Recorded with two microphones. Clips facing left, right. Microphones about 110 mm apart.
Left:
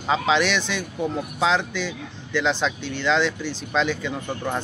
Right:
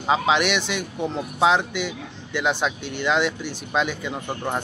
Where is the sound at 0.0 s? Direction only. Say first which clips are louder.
Right 1 dB; 15° right (ahead or behind).